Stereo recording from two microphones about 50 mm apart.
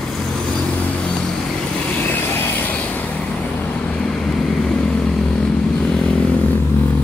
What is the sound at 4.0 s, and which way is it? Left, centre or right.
Vehicle, centre.